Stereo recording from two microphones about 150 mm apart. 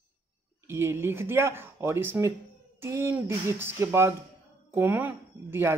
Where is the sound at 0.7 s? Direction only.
15° right (ahead or behind).